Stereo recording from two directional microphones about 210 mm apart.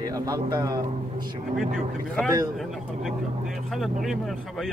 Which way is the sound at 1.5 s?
5° left (ahead or behind).